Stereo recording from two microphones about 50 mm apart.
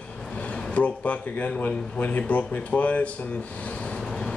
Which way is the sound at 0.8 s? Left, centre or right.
Left.